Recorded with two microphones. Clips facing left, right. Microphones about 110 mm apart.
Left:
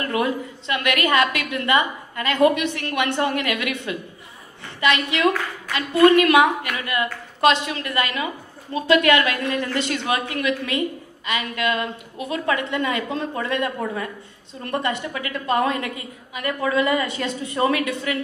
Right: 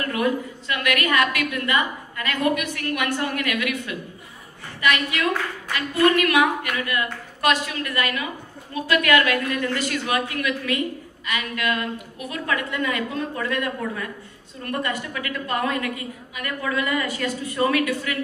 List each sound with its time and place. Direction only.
0.0 s a woman's voice: 25° left (ahead or behind)